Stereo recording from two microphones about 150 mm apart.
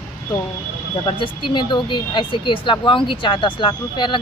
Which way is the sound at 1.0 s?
35° left (ahead or behind).